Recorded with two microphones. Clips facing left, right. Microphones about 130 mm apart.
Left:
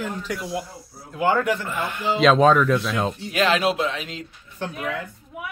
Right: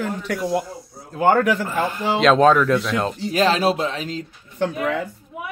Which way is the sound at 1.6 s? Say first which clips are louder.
Right 5 dB; 35° right (ahead or behind).